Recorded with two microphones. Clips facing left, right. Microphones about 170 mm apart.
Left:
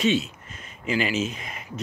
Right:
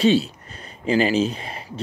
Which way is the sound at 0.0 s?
35° right (ahead or behind).